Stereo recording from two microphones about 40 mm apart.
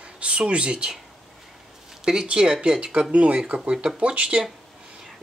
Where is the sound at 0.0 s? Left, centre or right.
Right.